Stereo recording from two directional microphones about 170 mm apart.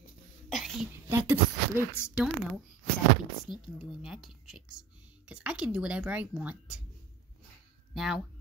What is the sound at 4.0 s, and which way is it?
Speech, centre (ahead or behind).